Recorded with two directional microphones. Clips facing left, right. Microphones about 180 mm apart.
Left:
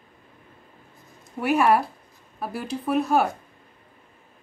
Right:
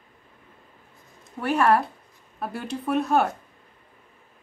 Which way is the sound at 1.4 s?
10° left (ahead or behind).